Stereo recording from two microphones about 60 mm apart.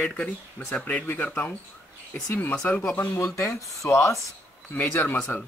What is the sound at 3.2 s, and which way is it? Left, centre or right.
Speech, left.